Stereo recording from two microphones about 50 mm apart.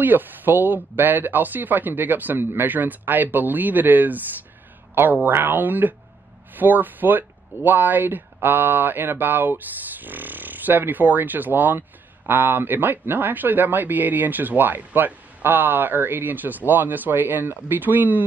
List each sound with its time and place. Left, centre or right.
0.0 s speech: right